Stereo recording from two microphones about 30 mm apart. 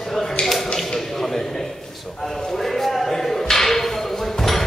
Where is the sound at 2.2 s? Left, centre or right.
Centre.